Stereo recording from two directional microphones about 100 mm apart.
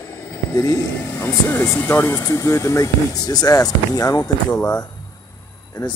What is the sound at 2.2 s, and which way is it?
Speech, 35° left (ahead or behind).